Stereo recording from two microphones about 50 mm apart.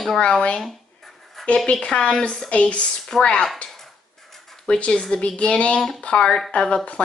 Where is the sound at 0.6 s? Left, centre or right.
Centre.